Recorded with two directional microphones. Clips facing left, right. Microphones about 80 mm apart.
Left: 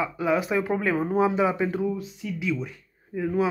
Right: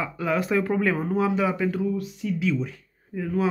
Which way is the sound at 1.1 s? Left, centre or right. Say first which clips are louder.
Left 1 dB; left.